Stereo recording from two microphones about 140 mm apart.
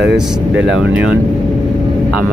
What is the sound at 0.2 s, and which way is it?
Speech, 5° right (ahead or behind).